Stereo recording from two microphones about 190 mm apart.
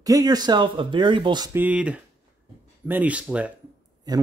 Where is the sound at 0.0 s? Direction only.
20° right (ahead or behind).